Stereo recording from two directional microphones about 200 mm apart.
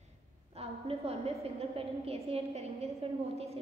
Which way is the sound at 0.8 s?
30° right (ahead or behind).